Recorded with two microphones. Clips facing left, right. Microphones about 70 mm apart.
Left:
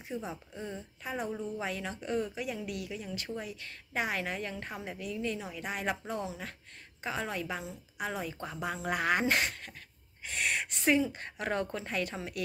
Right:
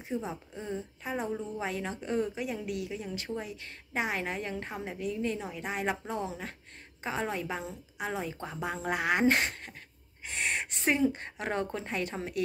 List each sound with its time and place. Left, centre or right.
0.1 s a woman's voice: right
9.2 s a woman's voice: right